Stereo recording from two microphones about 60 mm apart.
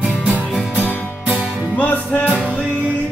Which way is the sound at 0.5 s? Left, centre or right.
Centre.